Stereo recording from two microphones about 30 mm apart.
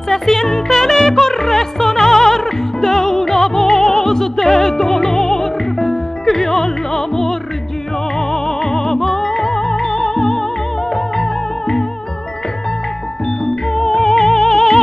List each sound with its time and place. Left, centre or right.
0.1 s music: centre
13.7 s music: centre